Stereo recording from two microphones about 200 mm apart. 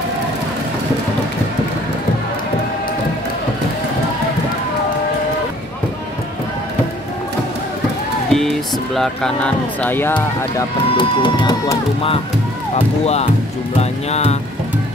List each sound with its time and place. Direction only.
8.3 s speech: centre (ahead or behind)
11.0 s speech: 25° left (ahead or behind)